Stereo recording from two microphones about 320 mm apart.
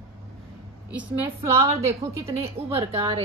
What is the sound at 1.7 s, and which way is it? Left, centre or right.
Speech, centre.